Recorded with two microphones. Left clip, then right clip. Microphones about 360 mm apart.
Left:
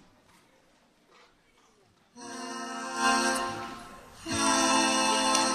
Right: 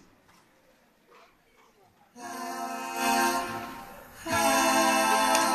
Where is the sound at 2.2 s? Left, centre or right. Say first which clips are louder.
Right 3 dB; right.